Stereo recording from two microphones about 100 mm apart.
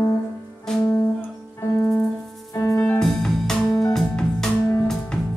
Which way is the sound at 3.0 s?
5° left (ahead or behind).